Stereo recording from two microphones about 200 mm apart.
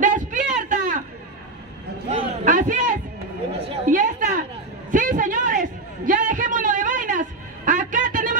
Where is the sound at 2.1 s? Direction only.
40° right (ahead or behind).